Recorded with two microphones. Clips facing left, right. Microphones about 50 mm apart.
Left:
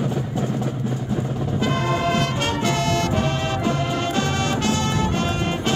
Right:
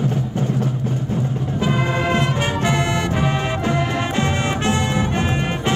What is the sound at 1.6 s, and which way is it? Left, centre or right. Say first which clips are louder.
Music: right 2 dB; centre.